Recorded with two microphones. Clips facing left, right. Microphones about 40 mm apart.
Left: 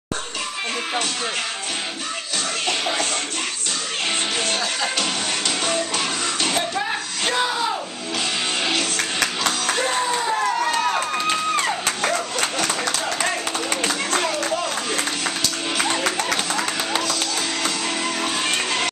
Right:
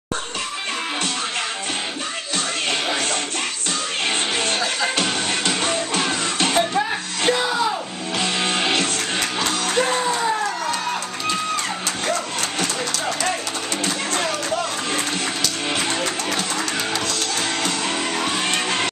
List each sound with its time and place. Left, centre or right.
5.5 s music: right
5.9 s music: centre
8.2 s music: right
9.8 s music: centre
17.8 s music: centre